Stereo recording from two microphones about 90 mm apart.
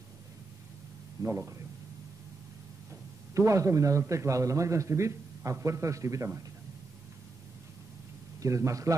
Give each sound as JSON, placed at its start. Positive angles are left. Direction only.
{"t": 1.2, "sound": "a man's voice", "side_deg": -30}
{"t": 3.3, "sound": "a man's voice", "side_deg": -35}
{"t": 8.4, "sound": "a man's voice", "side_deg": -35}